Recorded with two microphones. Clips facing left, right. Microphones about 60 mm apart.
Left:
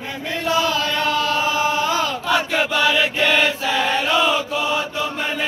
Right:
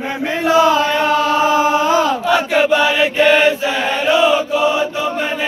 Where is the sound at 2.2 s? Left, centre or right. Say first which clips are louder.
Right 5 dB; centre.